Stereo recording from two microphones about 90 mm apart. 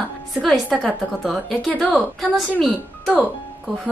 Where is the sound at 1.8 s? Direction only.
5° left (ahead or behind).